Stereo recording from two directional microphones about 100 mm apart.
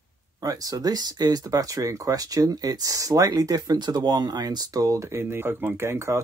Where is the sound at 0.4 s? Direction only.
35° right (ahead or behind).